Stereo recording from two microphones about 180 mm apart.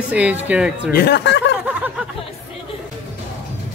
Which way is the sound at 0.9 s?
60° left (ahead or behind).